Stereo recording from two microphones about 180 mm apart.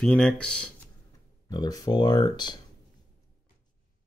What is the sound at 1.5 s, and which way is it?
Speech, 20° left (ahead or behind).